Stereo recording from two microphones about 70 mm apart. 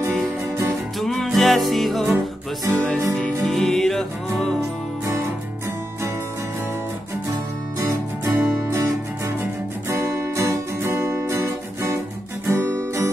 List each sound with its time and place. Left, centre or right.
0.9 s music: centre
2.7 s music: centre
4.6 s music: right
7.8 s music: right
9.8 s guitar: right